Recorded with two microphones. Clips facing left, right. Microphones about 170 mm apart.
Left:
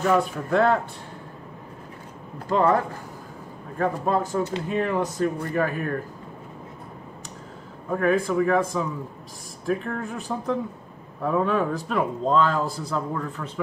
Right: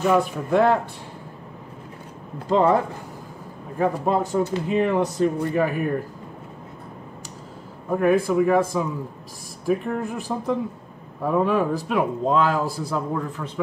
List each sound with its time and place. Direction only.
0.0 s speech: 10° right (ahead or behind)
2.5 s speech: 15° right (ahead or behind)
7.9 s speech: 10° right (ahead or behind)